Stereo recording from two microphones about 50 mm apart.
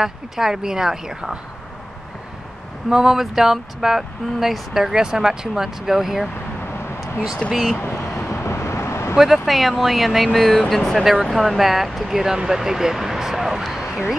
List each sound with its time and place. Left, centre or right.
0.0 s speech: centre
2.9 s speech: centre
7.4 s speech: centre
8.3 s vehicle: left
9.1 s speech: centre
12.4 s a sound: centre